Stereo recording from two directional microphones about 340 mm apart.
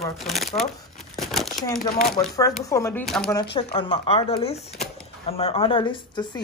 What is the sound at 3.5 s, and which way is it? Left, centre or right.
Speech, centre.